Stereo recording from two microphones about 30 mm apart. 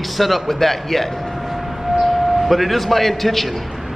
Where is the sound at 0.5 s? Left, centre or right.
Centre.